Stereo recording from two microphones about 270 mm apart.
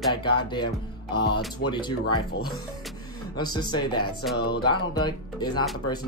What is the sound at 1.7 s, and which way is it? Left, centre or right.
Speech, centre.